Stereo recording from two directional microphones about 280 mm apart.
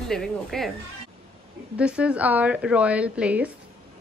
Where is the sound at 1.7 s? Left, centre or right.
Centre.